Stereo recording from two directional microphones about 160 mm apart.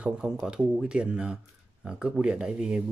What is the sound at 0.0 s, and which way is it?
Speech, 5° right (ahead or behind).